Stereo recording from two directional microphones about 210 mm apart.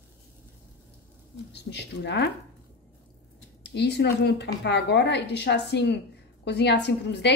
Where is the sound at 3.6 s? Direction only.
55° left (ahead or behind).